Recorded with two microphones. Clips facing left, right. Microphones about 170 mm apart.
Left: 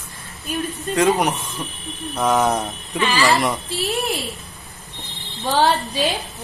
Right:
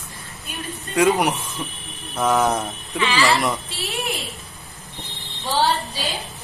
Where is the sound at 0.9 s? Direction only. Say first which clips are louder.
Even; 10° right (ahead or behind).